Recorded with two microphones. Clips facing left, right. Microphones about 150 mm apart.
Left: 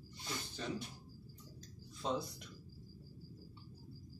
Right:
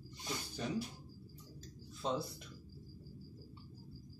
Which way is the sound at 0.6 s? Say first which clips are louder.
Right 2 dB; 10° right (ahead or behind).